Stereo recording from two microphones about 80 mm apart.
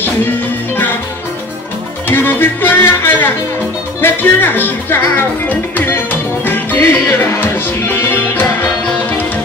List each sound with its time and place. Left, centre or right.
2.0 s music: left